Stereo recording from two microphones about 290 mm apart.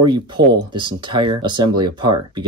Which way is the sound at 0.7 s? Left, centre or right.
Centre.